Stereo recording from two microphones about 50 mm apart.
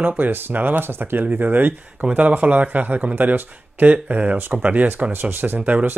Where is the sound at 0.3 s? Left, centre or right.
Right.